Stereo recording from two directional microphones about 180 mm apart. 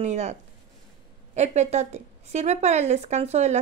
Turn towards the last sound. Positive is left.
turn(degrees=-40)  # may be behind; listen again after turning